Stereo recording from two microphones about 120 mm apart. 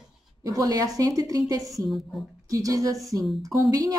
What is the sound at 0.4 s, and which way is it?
A woman's voice, 30° right (ahead or behind).